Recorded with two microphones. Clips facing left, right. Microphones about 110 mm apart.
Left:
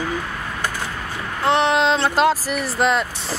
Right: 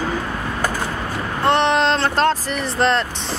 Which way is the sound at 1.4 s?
Centre (ahead or behind).